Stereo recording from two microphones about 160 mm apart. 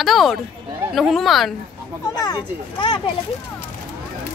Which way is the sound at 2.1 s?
25° left (ahead or behind).